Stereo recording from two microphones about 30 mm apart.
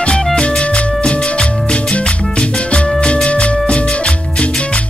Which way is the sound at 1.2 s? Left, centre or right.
Left.